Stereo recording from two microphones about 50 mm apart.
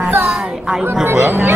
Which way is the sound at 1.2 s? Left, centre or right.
Right.